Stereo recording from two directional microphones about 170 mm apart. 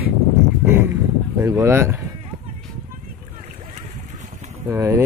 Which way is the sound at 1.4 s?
15° right (ahead or behind).